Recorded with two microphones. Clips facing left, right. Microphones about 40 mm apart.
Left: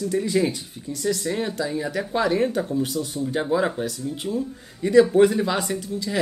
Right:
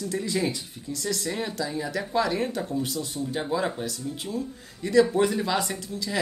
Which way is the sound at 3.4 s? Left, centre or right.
Centre.